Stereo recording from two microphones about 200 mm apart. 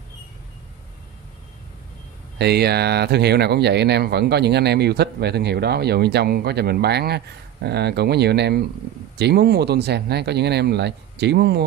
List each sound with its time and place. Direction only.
2.3 s speech: 55° right (ahead or behind)